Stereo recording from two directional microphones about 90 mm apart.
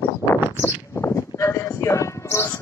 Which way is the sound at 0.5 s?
30° left (ahead or behind).